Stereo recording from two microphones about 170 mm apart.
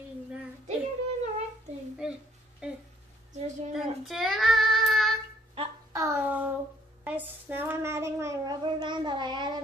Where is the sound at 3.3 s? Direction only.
45° right (ahead or behind).